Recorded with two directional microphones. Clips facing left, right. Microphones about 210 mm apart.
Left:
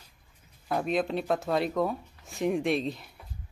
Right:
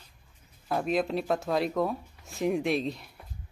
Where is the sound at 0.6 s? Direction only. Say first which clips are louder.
Even; centre (ahead or behind).